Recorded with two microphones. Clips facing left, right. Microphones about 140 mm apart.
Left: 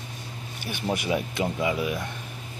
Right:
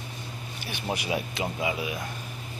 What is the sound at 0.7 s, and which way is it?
Speech, 50° left (ahead or behind).